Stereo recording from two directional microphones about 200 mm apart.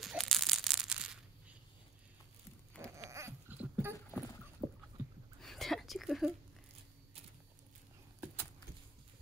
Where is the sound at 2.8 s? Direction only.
15° right (ahead or behind).